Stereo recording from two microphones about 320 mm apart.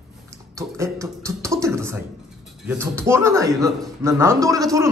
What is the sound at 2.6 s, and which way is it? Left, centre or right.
A man's voice, centre.